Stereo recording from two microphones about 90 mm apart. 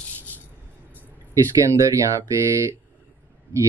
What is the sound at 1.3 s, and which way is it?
Speech, 35° right (ahead or behind).